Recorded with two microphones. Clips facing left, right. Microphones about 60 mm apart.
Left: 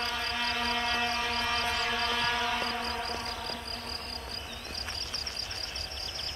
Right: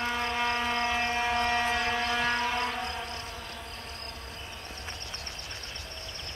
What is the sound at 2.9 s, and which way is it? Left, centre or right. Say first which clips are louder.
Insect: left 2 dB; left.